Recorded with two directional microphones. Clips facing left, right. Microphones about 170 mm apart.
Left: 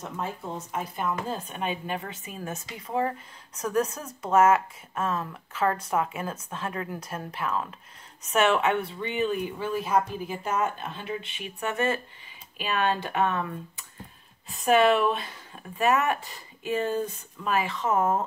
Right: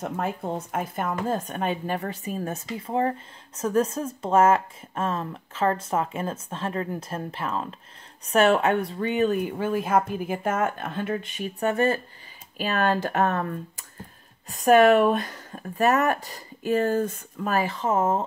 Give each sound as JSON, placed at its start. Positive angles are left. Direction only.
{"t": 0.0, "sound": "speech", "side_deg": -55}